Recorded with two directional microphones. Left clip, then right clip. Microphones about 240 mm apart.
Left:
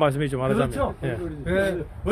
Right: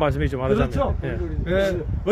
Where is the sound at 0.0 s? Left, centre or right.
Centre.